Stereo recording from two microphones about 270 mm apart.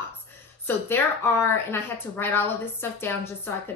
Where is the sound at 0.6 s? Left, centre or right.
Centre.